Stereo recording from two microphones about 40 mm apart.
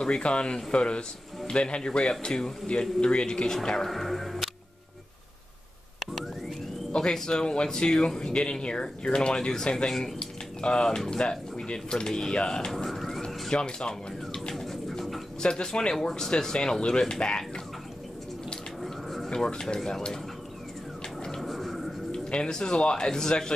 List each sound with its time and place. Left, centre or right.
0.0 s speech: left
3.9 s music: centre
6.9 s speech: centre
10.1 s speech: left
12.7 s a sound: centre
13.2 s speech: left
14.5 s bird: centre
15.4 s speech: left
18.8 s a sound: centre
19.3 s speech: centre
21.4 s a sound: centre
22.1 s speech: left